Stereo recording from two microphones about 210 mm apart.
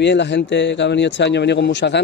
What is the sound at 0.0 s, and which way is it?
A man's voice, 55° left (ahead or behind).